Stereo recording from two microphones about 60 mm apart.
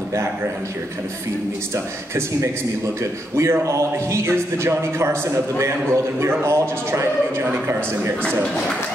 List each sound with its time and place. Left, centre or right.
3.0 s a man's voice: right